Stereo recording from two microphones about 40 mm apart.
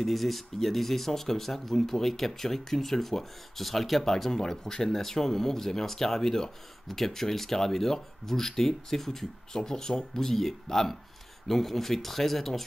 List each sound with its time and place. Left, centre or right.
0.0 s speech: centre